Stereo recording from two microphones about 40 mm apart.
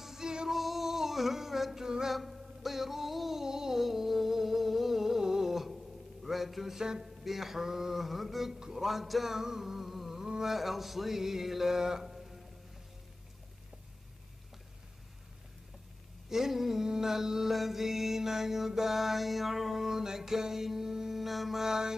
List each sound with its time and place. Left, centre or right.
0.0 s music: centre
0.5 s music: centre
2.0 s a sound: centre
6.8 s mantra: centre
7.2 s music: centre
16.3 s mantra: centre